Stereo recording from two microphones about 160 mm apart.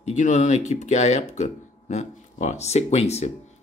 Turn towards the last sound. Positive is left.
turn(degrees=40)  # may be behind; listen again after turning